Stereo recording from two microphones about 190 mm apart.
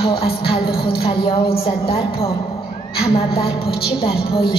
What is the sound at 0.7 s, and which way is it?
Music, 55° left (ahead or behind).